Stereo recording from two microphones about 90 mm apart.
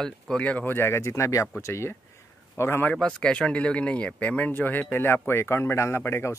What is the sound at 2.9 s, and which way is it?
Speech, 10° left (ahead or behind).